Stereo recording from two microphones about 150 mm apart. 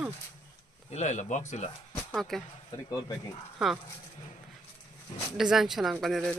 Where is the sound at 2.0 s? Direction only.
Centre (ahead or behind).